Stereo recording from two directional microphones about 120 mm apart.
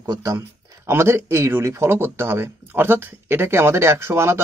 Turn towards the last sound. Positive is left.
turn(degrees=-20)  # may be behind; listen again after turning